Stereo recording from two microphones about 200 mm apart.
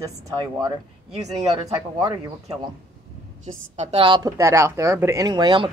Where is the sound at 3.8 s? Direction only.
30° right (ahead or behind).